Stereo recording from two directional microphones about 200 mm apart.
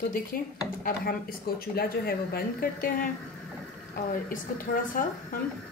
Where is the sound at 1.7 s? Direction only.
50° left (ahead or behind).